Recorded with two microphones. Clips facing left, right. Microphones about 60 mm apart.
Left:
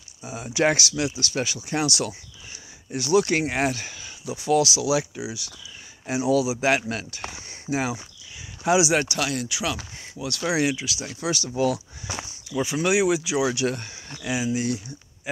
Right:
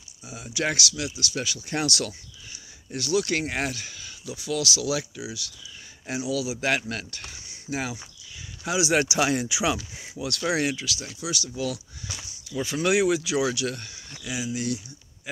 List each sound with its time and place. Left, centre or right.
0.2 s speech: left
1.9 s speech: centre
3.7 s speech: left
6.1 s speech: centre
6.4 s speech: centre
9.1 s speech: centre
9.9 s speech: centre
11.1 s speech: left
12.6 s speech: centre
13.6 s speech: left